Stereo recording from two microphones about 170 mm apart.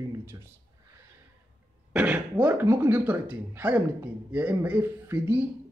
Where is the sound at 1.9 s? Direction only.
10° right (ahead or behind).